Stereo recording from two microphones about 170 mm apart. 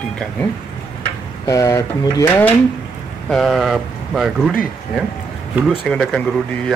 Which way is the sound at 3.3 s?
Centre (ahead or behind).